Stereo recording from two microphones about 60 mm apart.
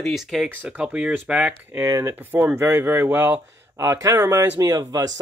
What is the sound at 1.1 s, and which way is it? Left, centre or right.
Speech, right.